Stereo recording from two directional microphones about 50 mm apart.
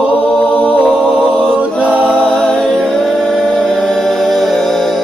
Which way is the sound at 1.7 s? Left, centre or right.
Left.